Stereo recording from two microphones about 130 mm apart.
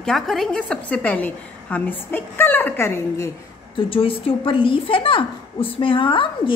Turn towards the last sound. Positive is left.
turn(degrees=40)  # may be behind; listen again after turning